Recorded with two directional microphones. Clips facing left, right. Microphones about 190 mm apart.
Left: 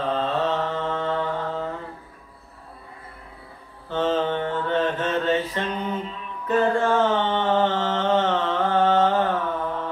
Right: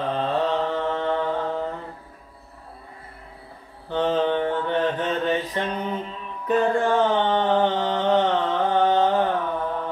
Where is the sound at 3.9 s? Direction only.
15° right (ahead or behind).